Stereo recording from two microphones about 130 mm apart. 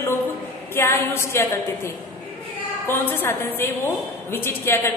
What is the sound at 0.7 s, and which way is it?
Speech, 20° left (ahead or behind).